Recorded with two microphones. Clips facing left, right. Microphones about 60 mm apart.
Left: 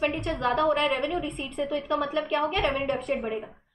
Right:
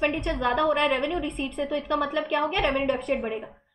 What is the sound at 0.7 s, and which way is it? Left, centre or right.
Speech, right.